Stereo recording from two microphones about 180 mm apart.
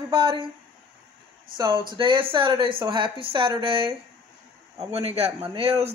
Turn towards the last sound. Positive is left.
turn(degrees=-35)  # may be behind; listen again after turning